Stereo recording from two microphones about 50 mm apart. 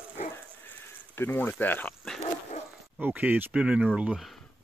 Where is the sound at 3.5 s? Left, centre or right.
Right.